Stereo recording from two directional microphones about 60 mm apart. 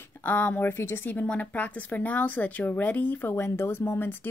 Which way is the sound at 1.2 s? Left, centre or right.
Left.